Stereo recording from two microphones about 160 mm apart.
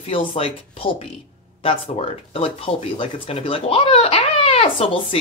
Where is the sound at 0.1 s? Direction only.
35° left (ahead or behind).